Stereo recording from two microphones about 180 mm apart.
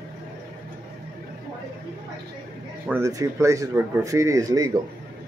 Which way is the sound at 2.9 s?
15° right (ahead or behind).